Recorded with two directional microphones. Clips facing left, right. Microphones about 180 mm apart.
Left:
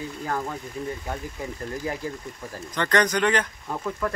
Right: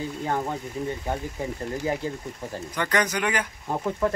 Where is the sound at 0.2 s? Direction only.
25° right (ahead or behind).